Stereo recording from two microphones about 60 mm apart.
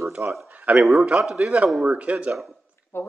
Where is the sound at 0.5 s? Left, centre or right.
Right.